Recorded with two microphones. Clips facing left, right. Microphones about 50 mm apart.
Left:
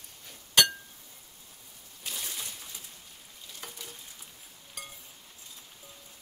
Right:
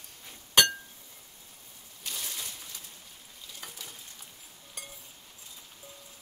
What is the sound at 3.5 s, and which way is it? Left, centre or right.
Frying, centre.